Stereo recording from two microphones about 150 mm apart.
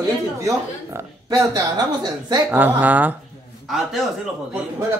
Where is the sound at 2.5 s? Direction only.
10° right (ahead or behind).